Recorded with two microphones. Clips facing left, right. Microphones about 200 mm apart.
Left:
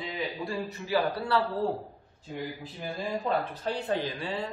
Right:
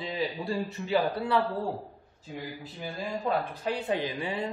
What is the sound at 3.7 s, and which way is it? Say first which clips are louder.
Speech: right 1 dB; 15° right (ahead or behind).